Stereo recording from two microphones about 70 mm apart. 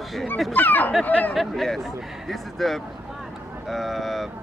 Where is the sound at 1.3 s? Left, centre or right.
Centre.